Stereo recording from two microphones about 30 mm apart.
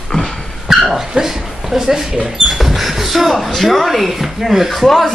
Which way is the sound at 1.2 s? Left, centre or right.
Centre.